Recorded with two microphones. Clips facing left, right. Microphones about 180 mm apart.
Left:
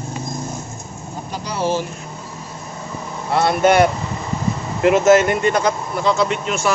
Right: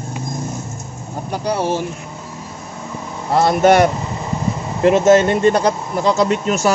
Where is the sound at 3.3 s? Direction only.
40° right (ahead or behind).